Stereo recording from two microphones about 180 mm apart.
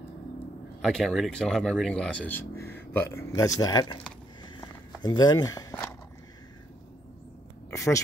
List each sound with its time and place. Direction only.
0.8 s speech: centre (ahead or behind); by 4.0 s 20° left (ahead or behind)
4.6 s walk: 25° left (ahead or behind)
7.7 s speech: 15° left (ahead or behind)